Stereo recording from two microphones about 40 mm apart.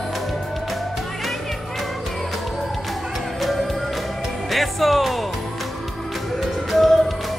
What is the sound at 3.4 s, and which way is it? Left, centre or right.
Music, centre.